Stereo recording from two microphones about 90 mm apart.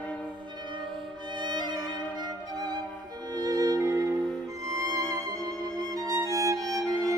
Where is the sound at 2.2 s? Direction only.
50° right (ahead or behind).